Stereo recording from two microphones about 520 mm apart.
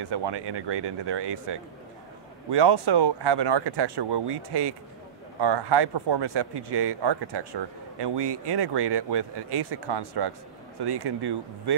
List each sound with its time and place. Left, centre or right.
0.0 s speech: right